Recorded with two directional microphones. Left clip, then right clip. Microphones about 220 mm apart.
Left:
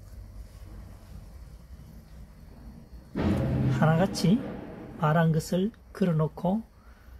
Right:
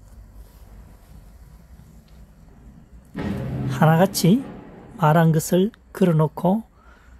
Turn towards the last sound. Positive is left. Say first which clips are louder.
# right 8 dB
turn(degrees=-55)  # may be behind; listen again after turning